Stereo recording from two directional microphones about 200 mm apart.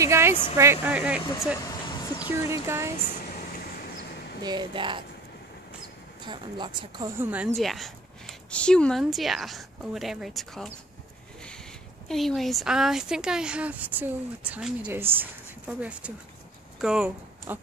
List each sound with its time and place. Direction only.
0.0 s speech: 15° right (ahead or behind)
3.1 s a sound: 45° left (ahead or behind)
4.4 s speech: 20° right (ahead or behind)
6.2 s speech: 25° right (ahead or behind)
7.2 s speech: 5° right (ahead or behind)
12.1 s speech: centre (ahead or behind)